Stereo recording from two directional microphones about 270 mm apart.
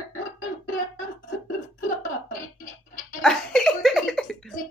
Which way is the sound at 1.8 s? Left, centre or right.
Left.